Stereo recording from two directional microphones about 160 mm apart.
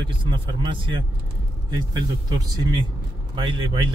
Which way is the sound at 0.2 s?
30° right (ahead or behind).